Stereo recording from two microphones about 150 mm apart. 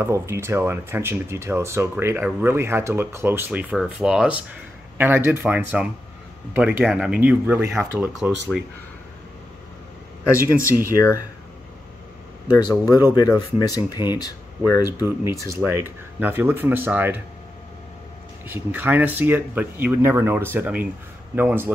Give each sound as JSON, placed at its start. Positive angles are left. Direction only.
{"t": 0.0, "sound": "speech", "side_deg": -15}
{"t": 8.2, "sound": "speech", "side_deg": -5}
{"t": 10.9, "sound": "speech", "side_deg": 20}
{"t": 12.4, "sound": "speech", "side_deg": 25}
{"t": 15.5, "sound": "speech", "side_deg": -15}
{"t": 18.5, "sound": "speech", "side_deg": -15}